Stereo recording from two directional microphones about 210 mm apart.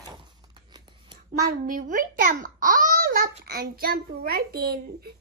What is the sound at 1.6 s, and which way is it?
A child's voice, 40° right (ahead or behind).